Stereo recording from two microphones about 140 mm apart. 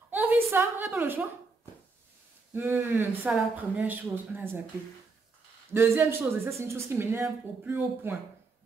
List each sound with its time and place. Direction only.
0.1 s a sound: 15° right (ahead or behind)
0.9 s speech: 15° right (ahead or behind)
2.5 s speech: 15° right (ahead or behind)
5.7 s speech: 15° right (ahead or behind)